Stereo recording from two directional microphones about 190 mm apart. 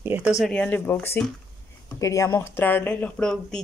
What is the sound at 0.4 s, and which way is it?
Speech, 5° left (ahead or behind).